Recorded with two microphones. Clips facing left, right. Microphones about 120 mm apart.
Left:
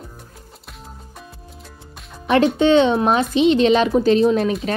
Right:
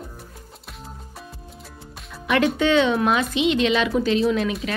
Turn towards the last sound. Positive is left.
turn(degrees=40)  # may be behind; listen again after turning